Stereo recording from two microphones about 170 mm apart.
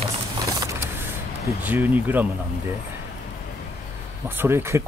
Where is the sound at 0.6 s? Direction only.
20° right (ahead or behind).